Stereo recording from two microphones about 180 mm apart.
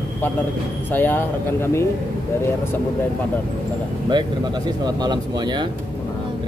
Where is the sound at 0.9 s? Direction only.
10° left (ahead or behind).